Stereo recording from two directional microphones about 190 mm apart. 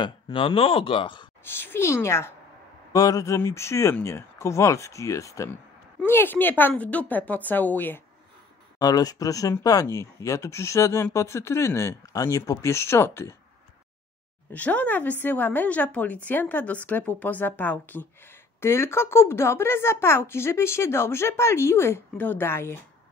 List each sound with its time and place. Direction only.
0.0 s speech: 25° left (ahead or behind)
1.4 s speech: 10° left (ahead or behind)
14.5 s speech: 10° left (ahead or behind)